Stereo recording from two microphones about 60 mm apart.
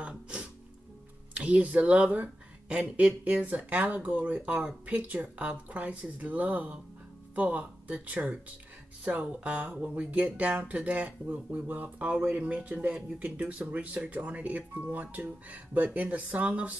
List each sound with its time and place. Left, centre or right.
0.0 s music: centre
1.3 s speech: right